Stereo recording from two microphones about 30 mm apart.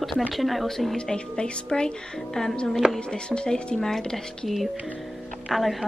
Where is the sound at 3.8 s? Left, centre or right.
Centre.